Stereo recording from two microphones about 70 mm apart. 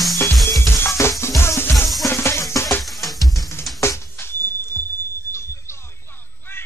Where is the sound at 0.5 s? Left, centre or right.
Left.